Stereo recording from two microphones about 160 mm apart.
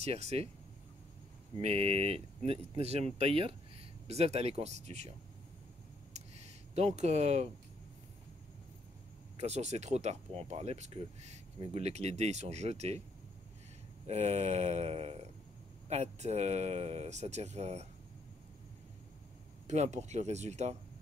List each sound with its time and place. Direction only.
0.0 s speech: 40° right (ahead or behind)
1.6 s speech: 35° right (ahead or behind)
6.1 s a sound: 40° right (ahead or behind)
7.0 s speech: 45° right (ahead or behind)
9.4 s speech: 45° right (ahead or behind)
14.0 s speech: 40° right (ahead or behind)
19.7 s speech: 45° right (ahead or behind)